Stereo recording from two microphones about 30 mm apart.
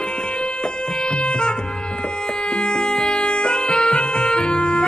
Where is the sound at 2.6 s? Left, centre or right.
Left.